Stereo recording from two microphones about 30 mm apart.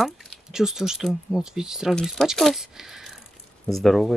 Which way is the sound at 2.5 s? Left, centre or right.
Centre.